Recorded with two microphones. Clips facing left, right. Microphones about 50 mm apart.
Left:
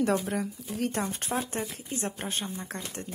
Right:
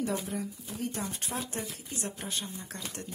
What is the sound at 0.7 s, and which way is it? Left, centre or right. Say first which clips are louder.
Speech: left 5 dB; left.